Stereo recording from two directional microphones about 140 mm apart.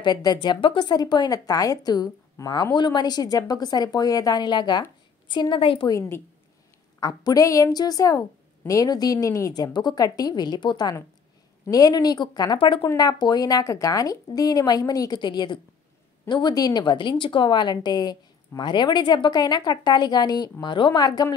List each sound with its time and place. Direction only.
0.0 s a woman's voice: 30° left (ahead or behind)
5.9 s a woman's voice: 20° left (ahead or behind)